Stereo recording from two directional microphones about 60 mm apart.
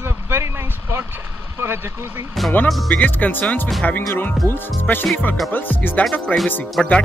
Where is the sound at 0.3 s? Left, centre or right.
Right.